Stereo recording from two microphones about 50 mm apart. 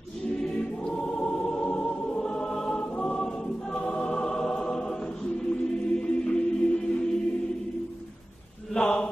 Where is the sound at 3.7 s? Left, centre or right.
Left.